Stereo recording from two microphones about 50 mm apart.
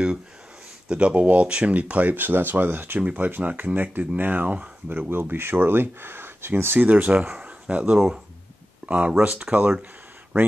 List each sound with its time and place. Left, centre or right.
0.8 s speech: right
3.0 s speech: right
5.1 s speech: right
6.9 s speech: right